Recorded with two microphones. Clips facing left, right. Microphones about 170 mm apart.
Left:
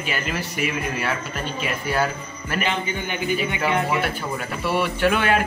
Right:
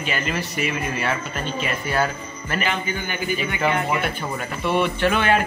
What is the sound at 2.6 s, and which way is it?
Speech, 20° left (ahead or behind).